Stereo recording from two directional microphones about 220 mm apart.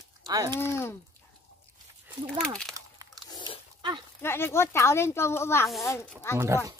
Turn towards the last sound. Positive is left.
turn(degrees=-15)  # may be behind; listen again after turning